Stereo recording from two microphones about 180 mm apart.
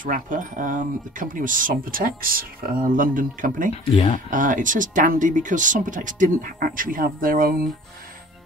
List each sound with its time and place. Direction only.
0.0 s speech: 45° right (ahead or behind)
3.7 s speech: 35° left (ahead or behind)
4.3 s speech: 45° right (ahead or behind)